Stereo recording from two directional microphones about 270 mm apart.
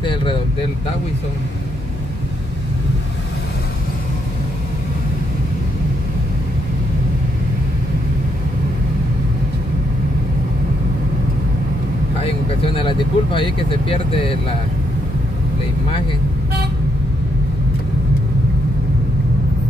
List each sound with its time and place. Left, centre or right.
0.0 s vehicle: centre
12.7 s speech: centre